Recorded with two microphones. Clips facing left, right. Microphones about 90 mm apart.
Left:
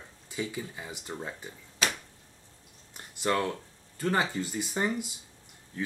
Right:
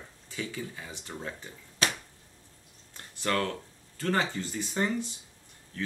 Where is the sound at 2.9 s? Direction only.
15° left (ahead or behind).